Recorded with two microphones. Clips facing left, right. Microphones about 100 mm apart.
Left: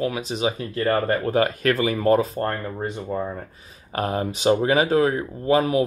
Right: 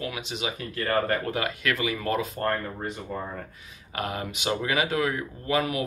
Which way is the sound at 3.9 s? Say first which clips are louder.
Left 7 dB; 35° left (ahead or behind).